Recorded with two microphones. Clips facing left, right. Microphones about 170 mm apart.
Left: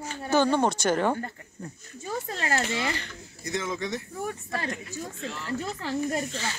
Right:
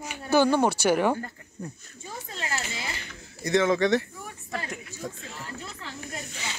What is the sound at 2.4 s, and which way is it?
Speech, 55° left (ahead or behind).